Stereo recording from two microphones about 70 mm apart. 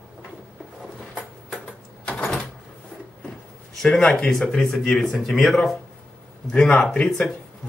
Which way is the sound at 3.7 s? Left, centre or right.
Centre.